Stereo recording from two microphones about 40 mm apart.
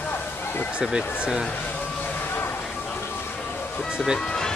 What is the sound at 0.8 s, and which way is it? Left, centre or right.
Speech, right.